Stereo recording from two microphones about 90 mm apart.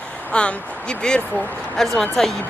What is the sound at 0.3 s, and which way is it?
Speech, 15° left (ahead or behind).